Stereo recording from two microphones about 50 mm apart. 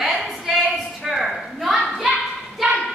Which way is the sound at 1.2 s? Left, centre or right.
Centre.